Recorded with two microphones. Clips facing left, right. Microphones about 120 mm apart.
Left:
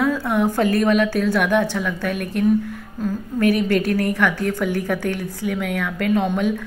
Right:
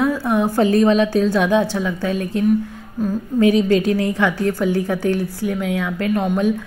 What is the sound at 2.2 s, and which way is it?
Speech, 75° left (ahead or behind).